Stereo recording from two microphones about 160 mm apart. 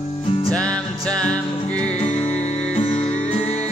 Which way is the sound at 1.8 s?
45° left (ahead or behind).